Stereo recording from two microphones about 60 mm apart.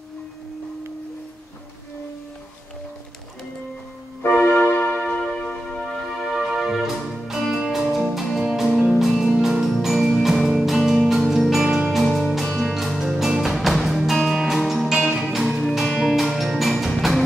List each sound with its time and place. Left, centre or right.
4.3 s music: left
5.4 s music: centre
5.8 s music: centre
12.0 s music: centre